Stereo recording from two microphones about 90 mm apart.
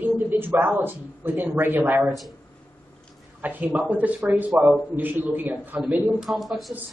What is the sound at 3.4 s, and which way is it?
A man's voice, 20° right (ahead or behind).